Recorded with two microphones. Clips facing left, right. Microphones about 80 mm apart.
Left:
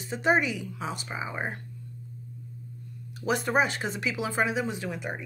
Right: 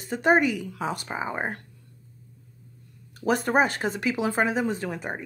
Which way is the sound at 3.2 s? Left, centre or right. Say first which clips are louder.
Right 3 dB; right.